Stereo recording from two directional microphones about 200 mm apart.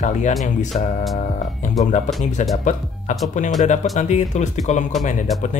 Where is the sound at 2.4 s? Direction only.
35° left (ahead or behind).